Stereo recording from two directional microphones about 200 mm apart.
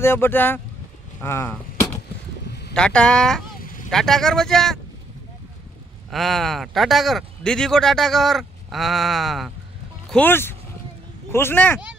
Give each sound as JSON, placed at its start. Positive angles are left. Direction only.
{"t": 0.0, "sound": "speech", "side_deg": 10}
{"t": 3.6, "sound": "vehicle", "side_deg": 40}
{"t": 3.9, "sound": "speech", "side_deg": 0}
{"t": 6.0, "sound": "speech", "side_deg": 0}